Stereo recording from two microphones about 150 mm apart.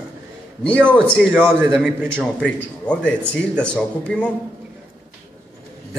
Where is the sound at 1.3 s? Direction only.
5° right (ahead or behind).